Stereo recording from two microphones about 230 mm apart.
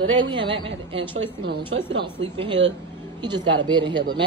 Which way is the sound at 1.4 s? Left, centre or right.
Right.